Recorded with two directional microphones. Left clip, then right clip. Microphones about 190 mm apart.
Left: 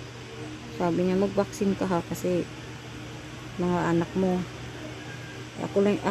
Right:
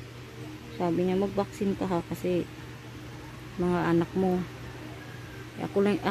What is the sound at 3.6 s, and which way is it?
Speech, 5° right (ahead or behind).